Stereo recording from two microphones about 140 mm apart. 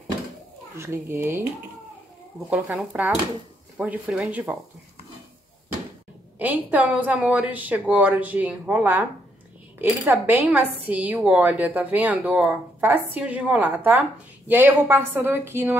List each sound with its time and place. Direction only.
0.7 s speech: 20° right (ahead or behind)
2.5 s a woman's voice: 5° right (ahead or behind)
6.3 s a woman's voice: 10° right (ahead or behind)
9.8 s a woman's voice: 15° right (ahead or behind)